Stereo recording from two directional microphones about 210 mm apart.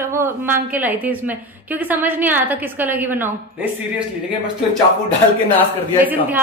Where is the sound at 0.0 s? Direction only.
10° right (ahead or behind).